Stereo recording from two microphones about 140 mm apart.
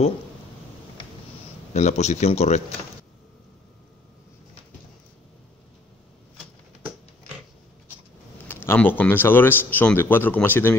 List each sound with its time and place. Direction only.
1.7 s speech: 55° left (ahead or behind)
8.6 s speech: 15° left (ahead or behind)